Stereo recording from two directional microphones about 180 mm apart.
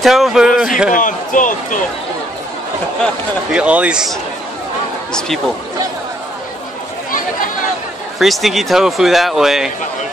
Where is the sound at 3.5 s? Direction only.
5° right (ahead or behind).